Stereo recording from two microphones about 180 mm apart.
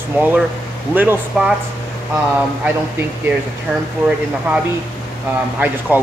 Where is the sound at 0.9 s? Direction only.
10° right (ahead or behind).